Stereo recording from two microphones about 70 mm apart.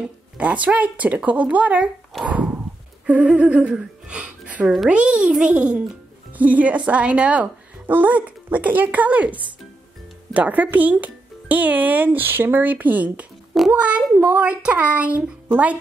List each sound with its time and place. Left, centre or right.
0.0 s speech: centre
2.2 s a sound: centre
3.1 s a child's voice: right
14.1 s speech: right
14.6 s speech: centre